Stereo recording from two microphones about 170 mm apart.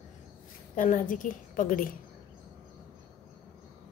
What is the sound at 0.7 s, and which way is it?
A woman's voice, 50° left (ahead or behind).